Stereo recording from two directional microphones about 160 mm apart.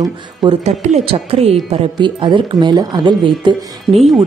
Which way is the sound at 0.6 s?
45° right (ahead or behind).